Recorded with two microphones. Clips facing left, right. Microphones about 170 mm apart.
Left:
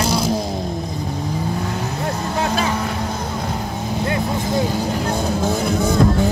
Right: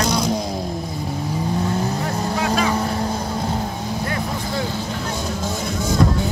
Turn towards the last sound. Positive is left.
turn(degrees=60)  # may be behind; listen again after turning